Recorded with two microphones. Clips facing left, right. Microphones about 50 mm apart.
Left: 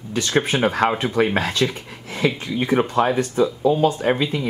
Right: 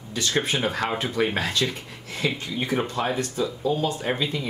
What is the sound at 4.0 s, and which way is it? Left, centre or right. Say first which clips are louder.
Speech: left 6 dB; left.